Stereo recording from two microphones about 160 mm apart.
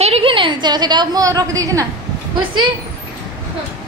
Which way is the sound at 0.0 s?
35° right (ahead or behind).